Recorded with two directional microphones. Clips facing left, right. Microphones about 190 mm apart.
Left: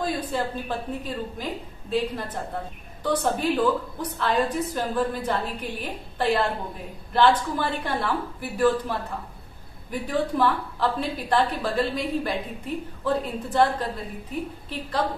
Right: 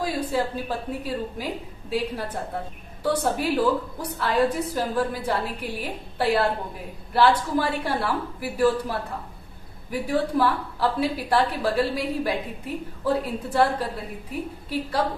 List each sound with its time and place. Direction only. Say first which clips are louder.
0.0 s a woman's voice: right 2 dB; 10° right (ahead or behind)